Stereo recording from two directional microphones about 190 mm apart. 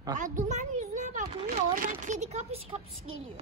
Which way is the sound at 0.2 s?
40° right (ahead or behind).